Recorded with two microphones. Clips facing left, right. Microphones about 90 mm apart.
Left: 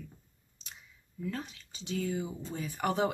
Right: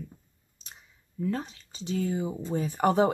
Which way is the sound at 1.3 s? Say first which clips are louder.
Right 5 dB; 35° right (ahead or behind).